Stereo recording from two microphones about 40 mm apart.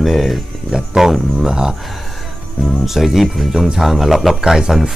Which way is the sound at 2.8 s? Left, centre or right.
Centre.